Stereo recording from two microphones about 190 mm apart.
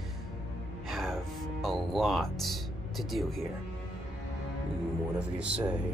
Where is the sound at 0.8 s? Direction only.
Centre (ahead or behind).